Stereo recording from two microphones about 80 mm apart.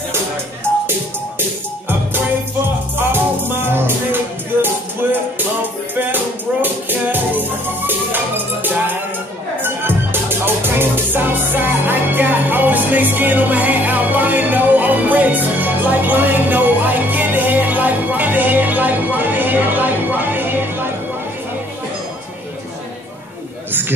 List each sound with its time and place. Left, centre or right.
3.0 s music: right